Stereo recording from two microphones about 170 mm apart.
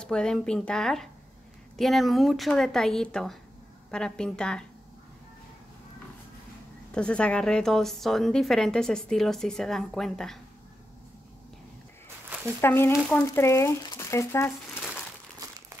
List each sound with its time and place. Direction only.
0.0 s a woman's voice: 5° left (ahead or behind)
6.9 s a woman's voice: 5° left (ahead or behind)
12.6 s speech: 15° left (ahead or behind)
15.3 s crumpling: 20° right (ahead or behind)